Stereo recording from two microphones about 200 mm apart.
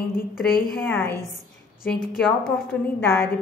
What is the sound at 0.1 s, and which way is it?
Speech, 45° left (ahead or behind).